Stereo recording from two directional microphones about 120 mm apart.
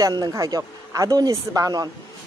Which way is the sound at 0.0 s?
35° right (ahead or behind).